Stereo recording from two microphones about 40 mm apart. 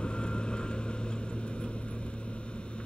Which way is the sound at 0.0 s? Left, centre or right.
Left.